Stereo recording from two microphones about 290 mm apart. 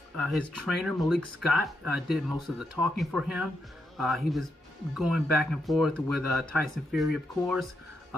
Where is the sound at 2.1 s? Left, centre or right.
Centre.